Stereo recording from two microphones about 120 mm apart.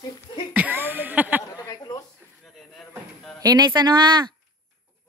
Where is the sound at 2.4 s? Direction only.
Centre (ahead or behind).